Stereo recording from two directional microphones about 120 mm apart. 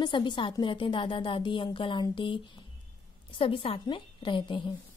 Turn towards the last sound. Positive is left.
turn(degrees=40)  # may be behind; listen again after turning